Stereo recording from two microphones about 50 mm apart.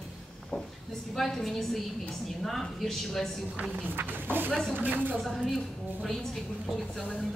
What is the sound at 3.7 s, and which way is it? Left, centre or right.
Speech, right.